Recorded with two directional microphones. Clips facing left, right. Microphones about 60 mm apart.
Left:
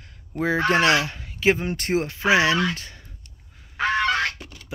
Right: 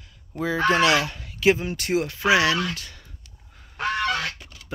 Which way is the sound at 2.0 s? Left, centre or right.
Left.